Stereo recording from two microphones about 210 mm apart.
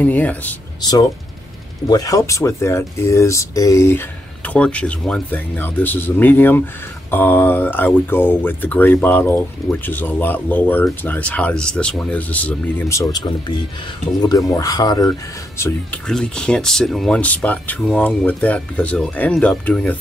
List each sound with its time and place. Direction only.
0.0 s speech: 5° left (ahead or behind)
1.9 s speech: 15° left (ahead or behind)